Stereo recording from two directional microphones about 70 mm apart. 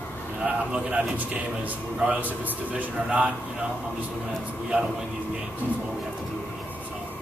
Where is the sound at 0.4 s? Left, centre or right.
Centre.